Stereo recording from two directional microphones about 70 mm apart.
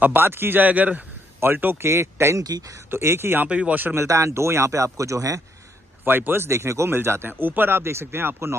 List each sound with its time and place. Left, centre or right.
0.0 s speech: right
2.4 s speech: right
2.9 s speech: right
3.4 s speech: centre
3.9 s speech: right
6.0 s speech: right